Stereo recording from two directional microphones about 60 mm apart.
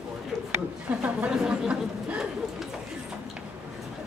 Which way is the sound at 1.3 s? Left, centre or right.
Centre.